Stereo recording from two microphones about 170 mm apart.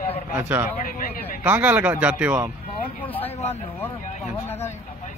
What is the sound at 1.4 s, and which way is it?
A man's voice, 10° right (ahead or behind).